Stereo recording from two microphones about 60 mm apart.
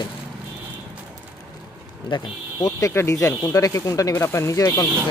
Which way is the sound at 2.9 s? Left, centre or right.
Left.